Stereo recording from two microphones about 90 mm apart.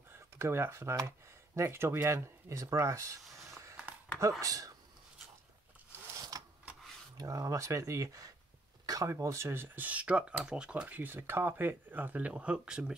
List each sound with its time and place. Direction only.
0.1 s speech: 25° right (ahead or behind)
4.4 s speech: 40° right (ahead or behind)
6.3 s a sound: 40° right (ahead or behind)
7.2 s speech: 40° right (ahead or behind); by 12.9 s 10° right (ahead or behind)